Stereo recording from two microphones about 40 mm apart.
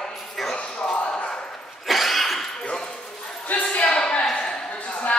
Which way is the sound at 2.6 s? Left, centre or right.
Left.